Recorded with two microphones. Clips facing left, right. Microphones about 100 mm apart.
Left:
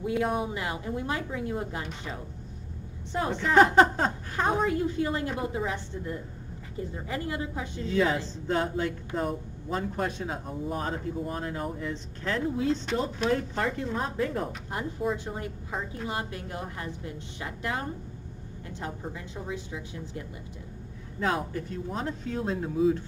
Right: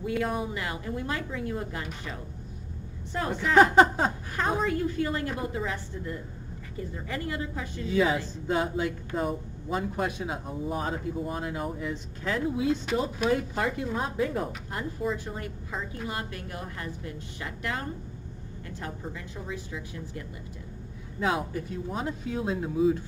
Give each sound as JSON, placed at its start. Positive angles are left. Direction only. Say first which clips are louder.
{"t": 0.0, "sound": "a woman's voice", "louder": "left 1 dB", "side_deg": 25}
{"t": 3.7, "sound": "speech", "louder": "right 1 dB", "side_deg": -10}
{"t": 4.6, "sound": "a woman's voice", "louder": "left 1 dB", "side_deg": 20}
{"t": 7.8, "sound": "speech", "louder": "right 1 dB", "side_deg": -5}
{"t": 14.7, "sound": "a woman's voice", "louder": "left 3 dB", "side_deg": 20}
{"t": 21.2, "sound": "speech", "louder": "right 1 dB", "side_deg": -5}